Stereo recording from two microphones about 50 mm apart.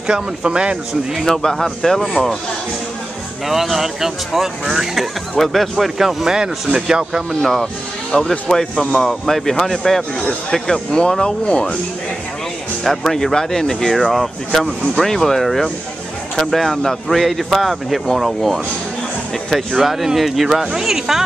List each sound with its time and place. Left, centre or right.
0.0 s speech: centre
1.3 s speech: centre
3.4 s speech: centre
8.1 s speech: centre
12.8 s speech: centre